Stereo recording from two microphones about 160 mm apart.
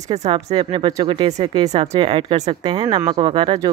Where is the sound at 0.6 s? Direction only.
30° right (ahead or behind).